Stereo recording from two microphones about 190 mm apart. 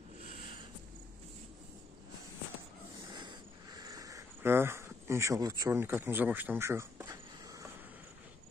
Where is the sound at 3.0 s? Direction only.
25° right (ahead or behind).